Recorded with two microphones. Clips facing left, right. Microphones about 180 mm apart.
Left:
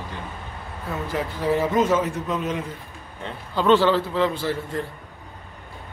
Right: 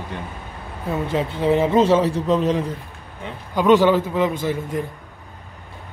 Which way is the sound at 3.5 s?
15° right (ahead or behind).